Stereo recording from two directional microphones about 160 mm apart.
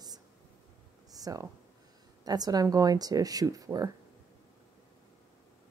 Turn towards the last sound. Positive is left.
turn(degrees=-20)  # may be behind; listen again after turning